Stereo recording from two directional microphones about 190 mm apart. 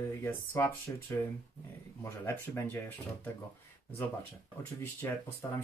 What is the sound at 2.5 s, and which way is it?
Speech, 15° left (ahead or behind).